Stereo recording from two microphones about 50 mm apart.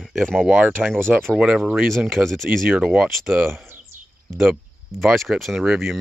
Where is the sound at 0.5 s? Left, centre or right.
Right.